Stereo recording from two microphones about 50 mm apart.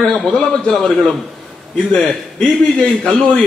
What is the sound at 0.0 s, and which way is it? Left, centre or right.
A man's voice, centre.